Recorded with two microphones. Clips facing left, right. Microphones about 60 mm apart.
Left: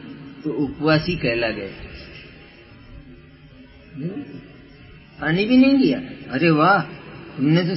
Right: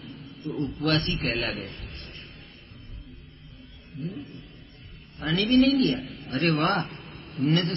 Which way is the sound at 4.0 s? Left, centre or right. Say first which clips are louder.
Left 6 dB; left.